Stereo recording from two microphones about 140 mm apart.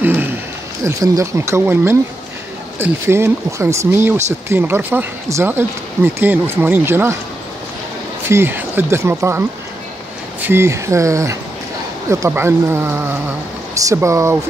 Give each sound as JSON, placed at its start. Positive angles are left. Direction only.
{"t": 0.0, "sound": "a sound", "side_deg": -15}
{"t": 0.8, "sound": "speech", "side_deg": -20}
{"t": 8.3, "sound": "speech", "side_deg": -15}